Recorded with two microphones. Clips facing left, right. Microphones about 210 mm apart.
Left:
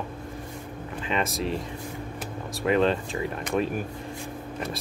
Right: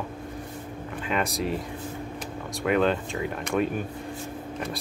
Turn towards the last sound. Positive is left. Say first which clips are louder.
# right 1 dB
turn(degrees=0)  # may be behind; listen again after turning